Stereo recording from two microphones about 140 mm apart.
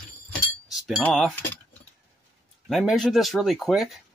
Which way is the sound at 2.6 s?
Centre (ahead or behind).